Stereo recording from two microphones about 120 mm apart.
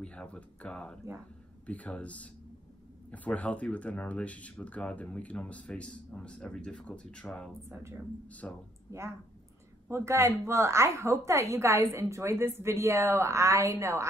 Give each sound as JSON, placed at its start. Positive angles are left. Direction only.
{"t": 0.0, "sound": "speech", "side_deg": 10}
{"t": 7.7, "sound": "a woman's voice", "side_deg": -25}
{"t": 8.4, "sound": "speech", "side_deg": 10}
{"t": 9.8, "sound": "a woman's voice", "side_deg": -25}